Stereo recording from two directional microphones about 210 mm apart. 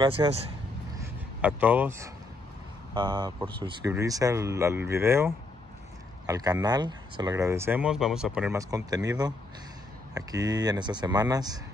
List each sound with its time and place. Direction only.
0.0 s speech: 25° right (ahead or behind)
1.4 s speech: 5° right (ahead or behind)